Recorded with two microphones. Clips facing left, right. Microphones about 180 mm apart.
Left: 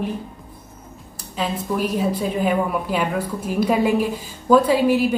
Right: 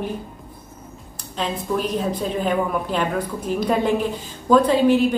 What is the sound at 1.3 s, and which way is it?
A woman's voice, 5° left (ahead or behind).